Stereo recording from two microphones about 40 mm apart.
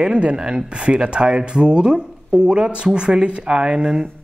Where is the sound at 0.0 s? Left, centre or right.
Right.